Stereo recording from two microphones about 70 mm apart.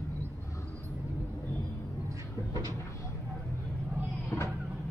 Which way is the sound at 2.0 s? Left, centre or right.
Right.